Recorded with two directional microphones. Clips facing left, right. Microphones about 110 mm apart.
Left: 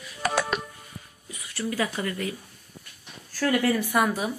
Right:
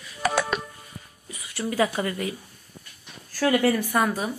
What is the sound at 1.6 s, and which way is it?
Speech, 40° right (ahead or behind).